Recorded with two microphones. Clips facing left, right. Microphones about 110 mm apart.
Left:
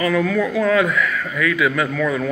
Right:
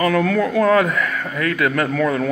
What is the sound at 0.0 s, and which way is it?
Speech, 60° right (ahead or behind).